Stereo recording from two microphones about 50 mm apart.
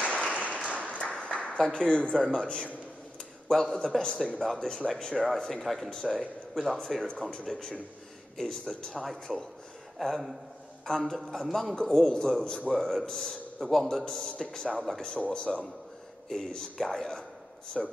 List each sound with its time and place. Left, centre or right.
0.0 s a sound: left
0.7 s applause: left
1.6 s a man's voice: centre
16.3 s speech: centre